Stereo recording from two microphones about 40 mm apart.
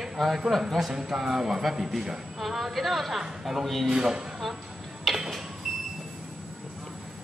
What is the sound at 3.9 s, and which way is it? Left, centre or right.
Speech, centre.